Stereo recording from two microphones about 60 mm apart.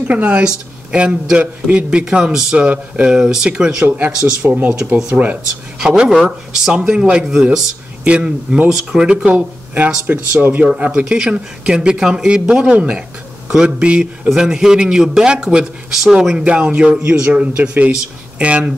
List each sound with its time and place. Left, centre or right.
0.1 s a man's voice: right
3.2 s a man's voice: centre
3.8 s speech: right
5.8 s a man's voice: centre